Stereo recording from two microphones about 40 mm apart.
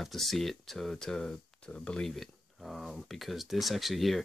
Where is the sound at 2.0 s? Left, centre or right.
Centre.